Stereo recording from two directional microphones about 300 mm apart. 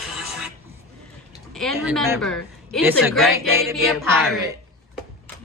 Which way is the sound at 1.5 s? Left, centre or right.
Centre.